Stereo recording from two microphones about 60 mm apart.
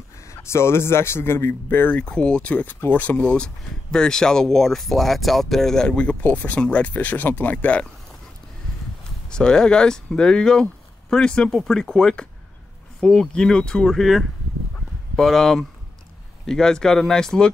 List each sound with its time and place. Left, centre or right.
0.3 s a man's voice: left
2.0 s speech: centre
2.5 s speech: left
6.2 s speech: left
9.3 s speech: centre
13.8 s speech: centre